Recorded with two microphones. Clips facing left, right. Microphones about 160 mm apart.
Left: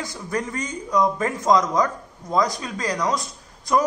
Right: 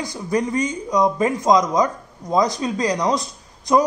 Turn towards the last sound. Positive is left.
turn(degrees=-20)  # may be behind; listen again after turning